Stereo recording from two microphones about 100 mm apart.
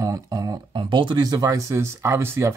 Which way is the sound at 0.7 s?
55° right (ahead or behind).